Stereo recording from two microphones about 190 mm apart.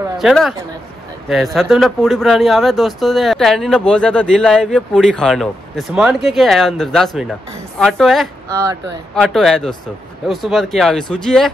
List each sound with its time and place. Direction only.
0.2 s speech: centre (ahead or behind)
8.5 s speech: 15° right (ahead or behind)
9.1 s speech: centre (ahead or behind)